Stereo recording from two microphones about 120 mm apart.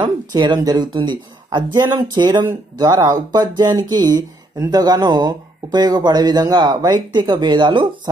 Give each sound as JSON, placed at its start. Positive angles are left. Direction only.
{"t": 0.0, "sound": "speech", "side_deg": -40}